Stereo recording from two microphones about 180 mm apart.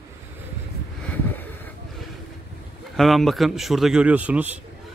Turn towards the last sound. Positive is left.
turn(degrees=-10)  # may be behind; listen again after turning